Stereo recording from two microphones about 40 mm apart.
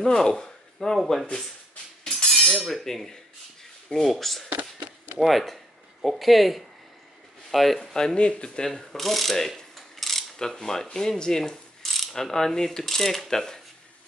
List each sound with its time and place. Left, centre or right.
0.0 s speech: centre
2.0 s a sound: centre
2.4 s cutlery: left
2.7 s speech: centre
4.5 s a sound: right
5.2 s speech: centre
7.8 s speech: centre
8.6 s mechanisms: centre
10.4 s speech: centre
11.8 s pulleys: centre
12.8 s speech: centre